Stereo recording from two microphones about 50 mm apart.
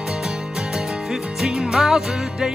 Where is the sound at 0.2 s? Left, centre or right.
Centre.